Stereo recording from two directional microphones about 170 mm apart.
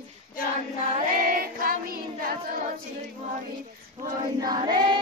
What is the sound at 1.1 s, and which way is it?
Singing, 55° right (ahead or behind).